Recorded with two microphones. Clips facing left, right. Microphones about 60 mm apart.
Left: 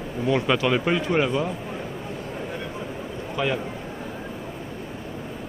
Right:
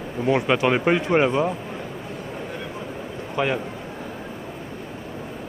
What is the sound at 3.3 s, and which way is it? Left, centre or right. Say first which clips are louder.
Speech: right 2 dB; right.